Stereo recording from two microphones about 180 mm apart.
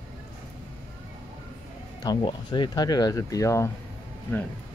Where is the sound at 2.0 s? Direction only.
25° left (ahead or behind).